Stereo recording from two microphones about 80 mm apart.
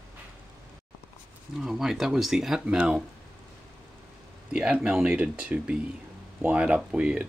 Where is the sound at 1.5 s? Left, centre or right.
Centre.